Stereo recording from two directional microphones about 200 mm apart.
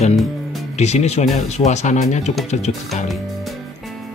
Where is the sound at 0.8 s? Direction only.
35° left (ahead or behind).